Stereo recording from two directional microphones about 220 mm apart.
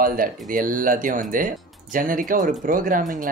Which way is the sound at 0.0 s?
40° right (ahead or behind).